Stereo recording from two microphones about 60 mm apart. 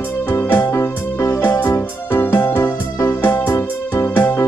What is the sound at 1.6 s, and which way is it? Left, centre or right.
Music, left.